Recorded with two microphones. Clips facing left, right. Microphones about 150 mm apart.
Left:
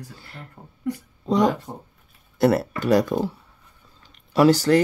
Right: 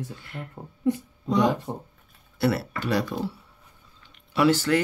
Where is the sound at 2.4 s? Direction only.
45° left (ahead or behind).